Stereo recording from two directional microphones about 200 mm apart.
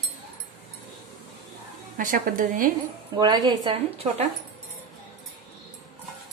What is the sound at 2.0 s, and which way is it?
Speech, 40° right (ahead or behind).